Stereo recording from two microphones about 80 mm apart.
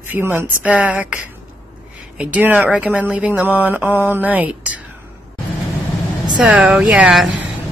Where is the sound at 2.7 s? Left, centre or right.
Centre.